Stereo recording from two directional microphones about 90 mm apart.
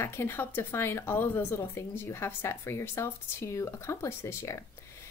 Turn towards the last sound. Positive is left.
turn(degrees=30)  # may be behind; listen again after turning